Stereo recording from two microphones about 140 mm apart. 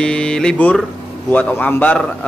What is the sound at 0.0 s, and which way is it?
A man's voice, 5° left (ahead or behind).